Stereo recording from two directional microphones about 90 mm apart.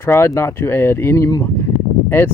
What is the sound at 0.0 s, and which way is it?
Speech, 30° left (ahead or behind).